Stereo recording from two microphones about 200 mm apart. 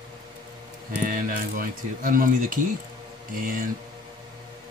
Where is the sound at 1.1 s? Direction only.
45° right (ahead or behind).